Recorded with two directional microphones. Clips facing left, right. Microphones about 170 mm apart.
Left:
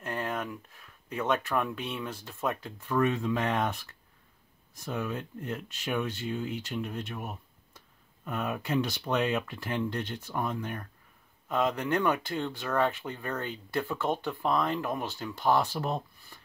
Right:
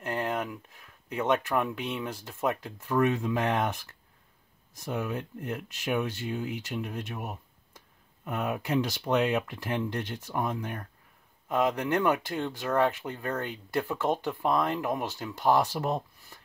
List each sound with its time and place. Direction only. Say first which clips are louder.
0.0 s speech: right 3 dB; 15° right (ahead or behind)
4.7 s speech: right 2 dB; 15° right (ahead or behind)
8.4 s speech: right 1 dB; 15° right (ahead or behind)